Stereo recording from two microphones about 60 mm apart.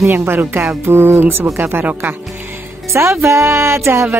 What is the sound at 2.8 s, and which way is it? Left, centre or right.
Speech, right.